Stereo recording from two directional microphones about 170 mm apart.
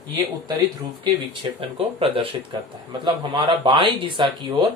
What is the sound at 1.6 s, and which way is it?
A man's voice, 35° right (ahead or behind).